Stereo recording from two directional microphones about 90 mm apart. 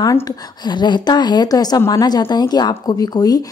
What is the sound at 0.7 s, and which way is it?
A woman's voice, 55° left (ahead or behind).